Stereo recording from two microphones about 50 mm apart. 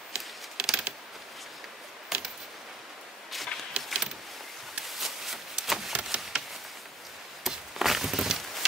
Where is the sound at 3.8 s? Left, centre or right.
Right.